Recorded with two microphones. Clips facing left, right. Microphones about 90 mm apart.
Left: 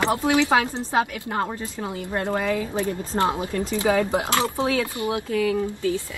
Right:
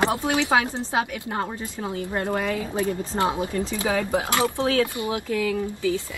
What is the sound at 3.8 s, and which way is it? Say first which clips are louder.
Speech: left 4 dB; 15° left (ahead or behind).